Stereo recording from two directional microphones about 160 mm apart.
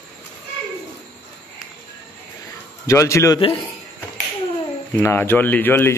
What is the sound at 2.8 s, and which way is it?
Speech, 20° left (ahead or behind).